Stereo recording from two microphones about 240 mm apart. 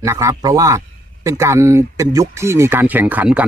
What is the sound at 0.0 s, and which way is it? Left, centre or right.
Speech, centre.